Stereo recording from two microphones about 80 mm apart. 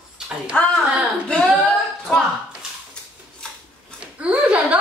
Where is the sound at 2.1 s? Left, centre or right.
Centre.